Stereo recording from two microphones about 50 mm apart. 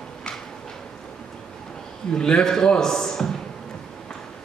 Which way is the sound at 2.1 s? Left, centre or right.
Centre.